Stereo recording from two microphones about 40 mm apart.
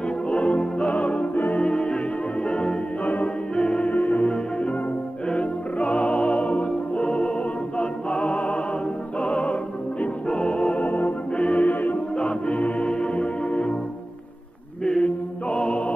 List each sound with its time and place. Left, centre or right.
0.3 s music: left
10.8 s music: left
11.3 s music: left
11.6 s music: left
12.2 s music: left
14.9 s music: left